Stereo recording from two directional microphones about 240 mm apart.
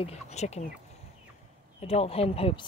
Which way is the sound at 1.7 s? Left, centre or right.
Left.